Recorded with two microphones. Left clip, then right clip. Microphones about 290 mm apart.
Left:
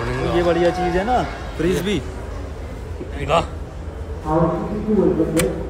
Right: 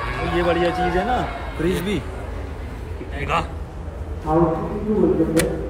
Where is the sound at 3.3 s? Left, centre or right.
Centre.